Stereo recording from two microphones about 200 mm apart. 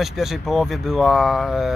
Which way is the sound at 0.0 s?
Centre (ahead or behind).